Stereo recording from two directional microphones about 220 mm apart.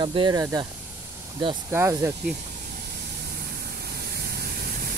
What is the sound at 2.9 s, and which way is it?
Vehicle, 45° right (ahead or behind).